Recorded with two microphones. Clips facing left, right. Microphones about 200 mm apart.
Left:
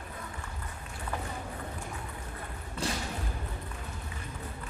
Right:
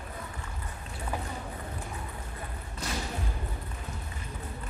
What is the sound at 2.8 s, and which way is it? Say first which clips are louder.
Thump: left 2 dB; 30° left (ahead or behind).